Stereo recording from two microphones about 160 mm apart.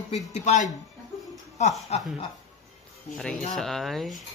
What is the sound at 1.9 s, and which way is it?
Speech, 40° left (ahead or behind).